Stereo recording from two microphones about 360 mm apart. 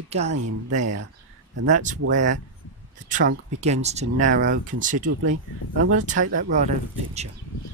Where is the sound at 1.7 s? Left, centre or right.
Right.